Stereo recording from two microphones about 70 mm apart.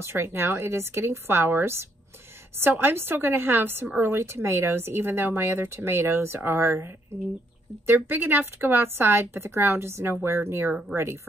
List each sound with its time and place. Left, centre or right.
0.0 s speech: right